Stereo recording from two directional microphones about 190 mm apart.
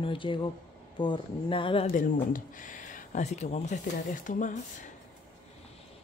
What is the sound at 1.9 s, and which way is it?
Speech, 45° left (ahead or behind).